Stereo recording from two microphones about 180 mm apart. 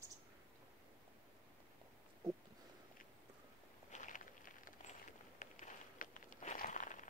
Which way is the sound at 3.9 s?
45° left (ahead or behind).